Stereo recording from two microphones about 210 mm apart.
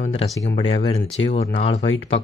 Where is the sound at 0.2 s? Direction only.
25° left (ahead or behind).